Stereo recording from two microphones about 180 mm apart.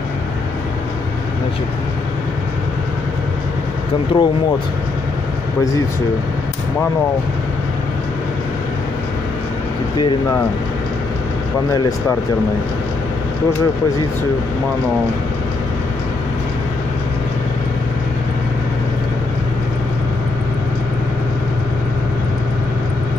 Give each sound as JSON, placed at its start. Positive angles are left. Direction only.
{"t": 4.1, "sound": "speech", "side_deg": 25}
{"t": 9.9, "sound": "speech", "side_deg": 20}